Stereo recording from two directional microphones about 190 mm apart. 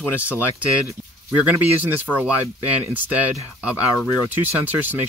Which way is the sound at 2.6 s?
10° right (ahead or behind).